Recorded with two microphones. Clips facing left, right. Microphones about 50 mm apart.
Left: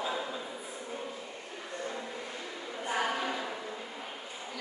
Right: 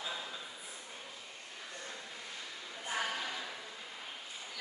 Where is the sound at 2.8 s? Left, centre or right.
Left.